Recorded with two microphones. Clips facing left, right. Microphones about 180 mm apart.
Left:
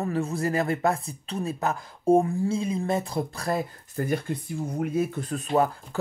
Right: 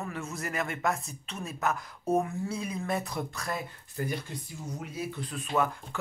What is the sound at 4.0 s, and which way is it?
Speech, 55° left (ahead or behind).